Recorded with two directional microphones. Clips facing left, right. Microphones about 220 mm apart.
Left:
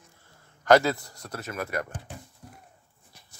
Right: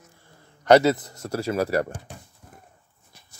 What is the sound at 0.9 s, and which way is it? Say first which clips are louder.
Speech: right 9 dB; 20° right (ahead or behind).